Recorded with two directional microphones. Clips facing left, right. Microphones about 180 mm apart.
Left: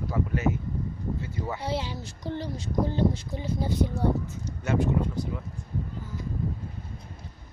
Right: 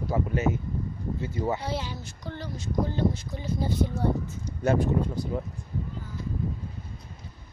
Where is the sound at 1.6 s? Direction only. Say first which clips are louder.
Left 2 dB; 25° left (ahead or behind).